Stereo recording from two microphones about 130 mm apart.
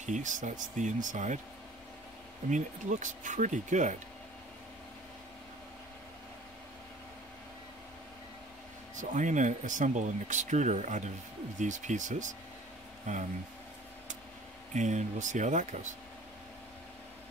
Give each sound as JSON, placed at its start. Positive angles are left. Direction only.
{"t": 0.0, "sound": "speech", "side_deg": -75}
{"t": 2.5, "sound": "speech", "side_deg": -70}
{"t": 8.9, "sound": "speech", "side_deg": -75}
{"t": 14.7, "sound": "speech", "side_deg": -70}